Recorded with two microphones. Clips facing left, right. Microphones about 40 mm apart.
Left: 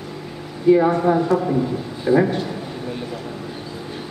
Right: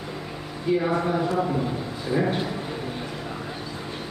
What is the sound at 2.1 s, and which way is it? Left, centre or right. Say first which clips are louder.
Speech: left 9 dB; left.